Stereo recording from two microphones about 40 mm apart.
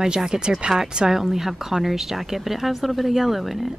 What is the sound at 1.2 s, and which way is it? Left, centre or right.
Speech, centre.